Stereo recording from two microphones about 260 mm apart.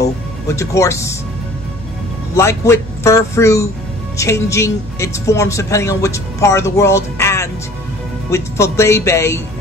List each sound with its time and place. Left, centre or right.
0.0 s speech: centre
2.3 s speech: centre